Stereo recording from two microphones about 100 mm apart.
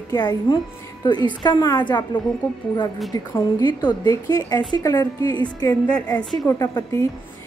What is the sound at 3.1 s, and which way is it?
A woman's voice, 45° left (ahead or behind).